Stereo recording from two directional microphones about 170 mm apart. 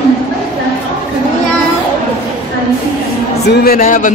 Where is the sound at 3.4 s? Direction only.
70° left (ahead or behind); by 4.1 s 50° left (ahead or behind).